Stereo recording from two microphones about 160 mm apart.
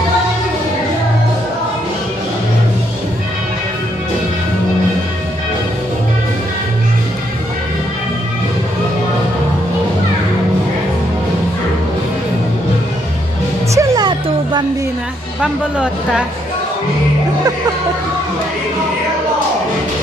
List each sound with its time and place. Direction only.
13.7 s music: 25° right (ahead or behind)
15.4 s speech: 5° right (ahead or behind)